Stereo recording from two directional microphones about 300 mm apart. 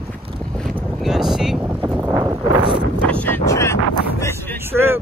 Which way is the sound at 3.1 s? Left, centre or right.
Centre.